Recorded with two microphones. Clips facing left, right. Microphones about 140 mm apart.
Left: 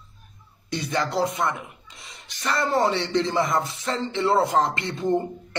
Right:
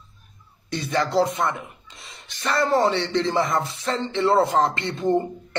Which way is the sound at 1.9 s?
25° right (ahead or behind).